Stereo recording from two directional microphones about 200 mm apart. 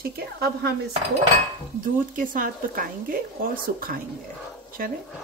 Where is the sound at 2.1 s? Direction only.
45° right (ahead or behind).